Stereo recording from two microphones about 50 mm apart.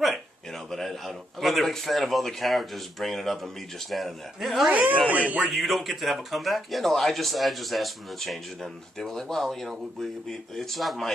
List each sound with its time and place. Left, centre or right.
0.0 s a man's voice: centre
4.6 s speech: right
5.5 s a man's voice: centre